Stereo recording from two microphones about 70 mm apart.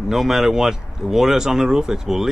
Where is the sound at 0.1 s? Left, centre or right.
Centre.